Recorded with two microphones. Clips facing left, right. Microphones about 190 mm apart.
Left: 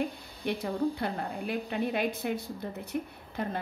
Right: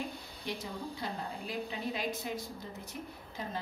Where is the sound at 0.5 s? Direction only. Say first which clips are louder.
Left 10 dB; 60° left (ahead or behind).